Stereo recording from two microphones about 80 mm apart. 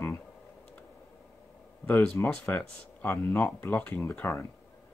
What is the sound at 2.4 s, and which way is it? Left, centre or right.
Speech, left.